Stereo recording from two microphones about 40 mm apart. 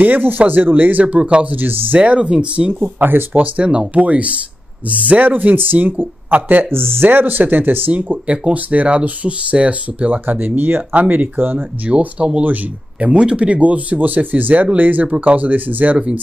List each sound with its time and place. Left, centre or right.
0.0 s speech: right
1.0 s speech: right
1.5 s speech: right
2.0 s speech: right
2.7 s speech: right
3.3 s speech: right
6.7 s speech: right
7.9 s speech: right
12.2 s speech: centre; by 16.0 s right